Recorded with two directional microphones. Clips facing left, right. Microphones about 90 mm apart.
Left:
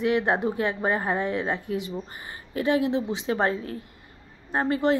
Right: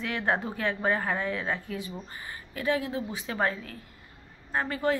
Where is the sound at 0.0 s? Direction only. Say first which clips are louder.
Left 6 dB; 20° left (ahead or behind).